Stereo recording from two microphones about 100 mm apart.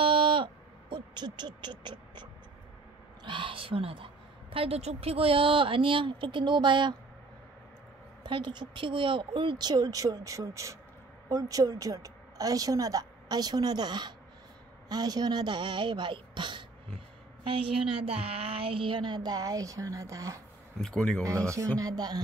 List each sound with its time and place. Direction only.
0.0 s a sound: 60° right (ahead or behind)
3.3 s a woman's voice: 55° right (ahead or behind)
8.2 s a child's voice: 50° right (ahead or behind); by 20.3 s 35° right (ahead or behind)
20.8 s speech: 5° left (ahead or behind)
21.2 s a woman's voice: 30° right (ahead or behind)